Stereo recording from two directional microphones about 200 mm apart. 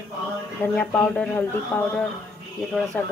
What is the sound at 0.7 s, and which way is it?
Speech, 5° left (ahead or behind).